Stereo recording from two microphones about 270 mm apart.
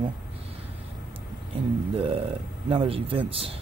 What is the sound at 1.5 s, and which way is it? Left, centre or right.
Speech, centre.